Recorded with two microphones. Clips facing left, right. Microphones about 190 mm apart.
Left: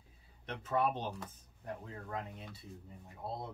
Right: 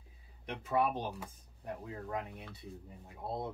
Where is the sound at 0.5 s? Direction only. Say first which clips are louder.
Right 1 dB; 10° right (ahead or behind).